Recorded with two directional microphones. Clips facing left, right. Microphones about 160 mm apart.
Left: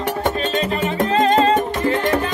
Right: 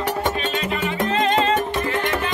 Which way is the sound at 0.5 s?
35° left (ahead or behind).